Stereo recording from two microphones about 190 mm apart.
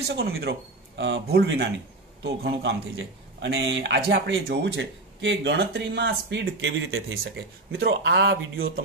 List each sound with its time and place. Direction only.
0.1 s speech: 55° right (ahead or behind)
3.3 s speech: 75° right (ahead or behind); by 8.8 s 60° right (ahead or behind)